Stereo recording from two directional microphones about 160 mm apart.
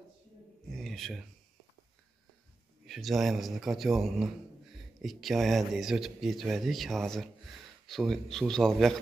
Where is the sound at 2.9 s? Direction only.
Centre (ahead or behind).